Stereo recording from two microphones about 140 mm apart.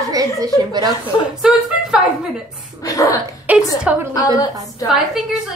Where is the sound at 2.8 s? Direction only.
25° left (ahead or behind).